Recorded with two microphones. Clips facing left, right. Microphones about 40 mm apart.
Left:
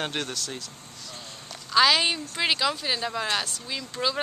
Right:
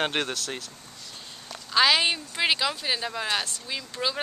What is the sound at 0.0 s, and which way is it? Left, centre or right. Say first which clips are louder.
Speech: right 3 dB; right.